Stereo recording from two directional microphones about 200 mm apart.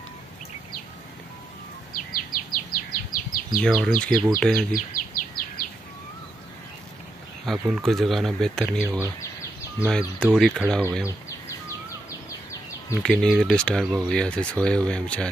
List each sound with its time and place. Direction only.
2.0 s bird vocalization: 45° left (ahead or behind)
3.6 s speech: centre (ahead or behind)
4.7 s bird: 45° left (ahead or behind)
7.4 s speech: 5° right (ahead or behind)
8.8 s speech: 10° right (ahead or behind)
9.8 s speech: centre (ahead or behind)
13.0 s speech: centre (ahead or behind)